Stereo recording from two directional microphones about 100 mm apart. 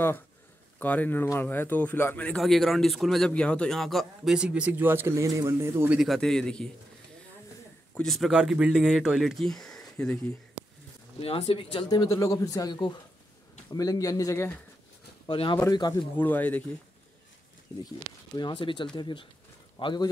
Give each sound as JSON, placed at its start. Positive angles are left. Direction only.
{"t": 0.7, "sound": "speech", "side_deg": 15}
{"t": 2.3, "sound": "speech", "side_deg": 0}
{"t": 5.9, "sound": "speech", "side_deg": 0}
{"t": 7.9, "sound": "speech", "side_deg": 5}
{"t": 11.1, "sound": "speech", "side_deg": 70}
{"t": 11.9, "sound": "speech", "side_deg": 40}
{"t": 15.2, "sound": "speech", "side_deg": 60}
{"t": 15.5, "sound": "speech", "side_deg": 45}
{"t": 16.2, "sound": "speech", "side_deg": 15}
{"t": 17.8, "sound": "speech", "side_deg": 45}